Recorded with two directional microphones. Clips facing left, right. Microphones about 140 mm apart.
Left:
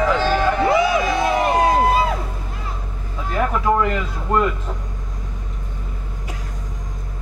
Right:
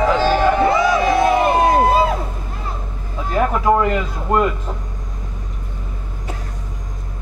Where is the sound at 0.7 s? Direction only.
30° right (ahead or behind).